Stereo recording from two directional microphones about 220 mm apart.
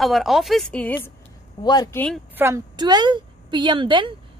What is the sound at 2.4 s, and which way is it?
A woman's voice, 15° right (ahead or behind).